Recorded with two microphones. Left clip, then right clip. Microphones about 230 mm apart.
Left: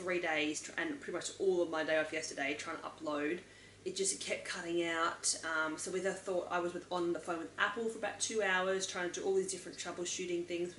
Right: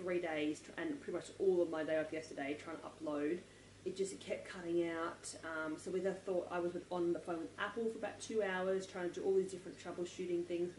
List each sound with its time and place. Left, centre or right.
0.0 s speech: centre
1.4 s speech: right
1.7 s speech: centre
6.9 s speech: right
7.2 s speech: centre